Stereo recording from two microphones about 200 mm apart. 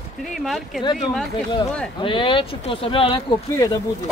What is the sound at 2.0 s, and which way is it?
Speech, 25° left (ahead or behind).